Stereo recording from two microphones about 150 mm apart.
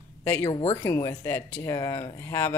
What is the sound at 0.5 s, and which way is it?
Speech, 40° left (ahead or behind).